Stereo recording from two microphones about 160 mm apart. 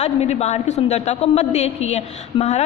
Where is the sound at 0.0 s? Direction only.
45° left (ahead or behind).